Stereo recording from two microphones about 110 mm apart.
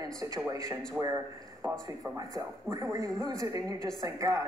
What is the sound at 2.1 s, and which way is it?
A woman's voice, 35° right (ahead or behind).